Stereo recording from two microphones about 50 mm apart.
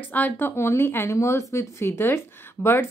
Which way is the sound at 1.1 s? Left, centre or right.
Left.